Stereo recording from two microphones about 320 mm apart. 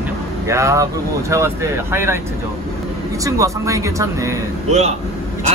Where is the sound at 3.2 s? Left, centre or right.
Centre.